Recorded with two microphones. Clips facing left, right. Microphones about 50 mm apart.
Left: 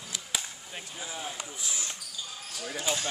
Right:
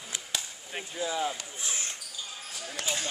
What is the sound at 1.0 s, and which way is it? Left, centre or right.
Speech, right.